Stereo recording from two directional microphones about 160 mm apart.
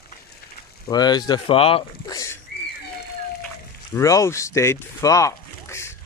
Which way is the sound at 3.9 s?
20° left (ahead or behind).